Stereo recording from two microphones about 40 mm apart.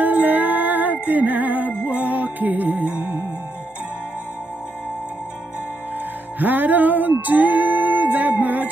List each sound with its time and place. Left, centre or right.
0.0 s music: right
6.4 s music: right